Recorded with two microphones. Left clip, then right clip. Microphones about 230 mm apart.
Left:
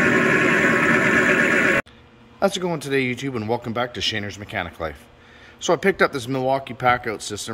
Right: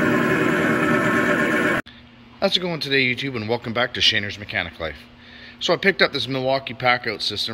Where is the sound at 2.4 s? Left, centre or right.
Centre.